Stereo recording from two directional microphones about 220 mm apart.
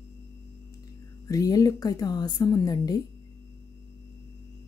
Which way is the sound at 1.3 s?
15° left (ahead or behind).